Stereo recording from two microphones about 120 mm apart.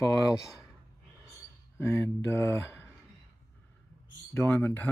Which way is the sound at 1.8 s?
20° left (ahead or behind).